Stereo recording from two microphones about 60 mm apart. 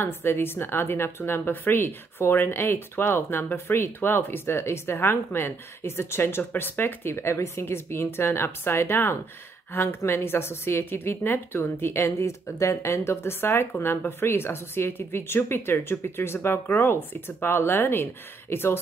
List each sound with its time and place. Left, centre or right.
0.0 s a woman's voice: left